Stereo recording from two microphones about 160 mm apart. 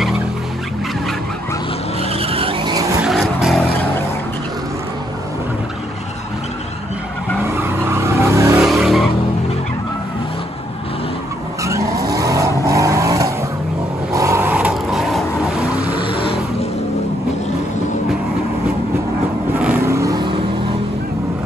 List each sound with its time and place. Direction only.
2.1 s vehicle: 35° right (ahead or behind)
3.0 s vehicle: 5° right (ahead or behind)
7.4 s vehicle: 15° right (ahead or behind)
8.5 s vehicle: centre (ahead or behind)
11.6 s vehicle: 20° right (ahead or behind); by 15.8 s 5° right (ahead or behind)
19.8 s vehicle: 20° right (ahead or behind)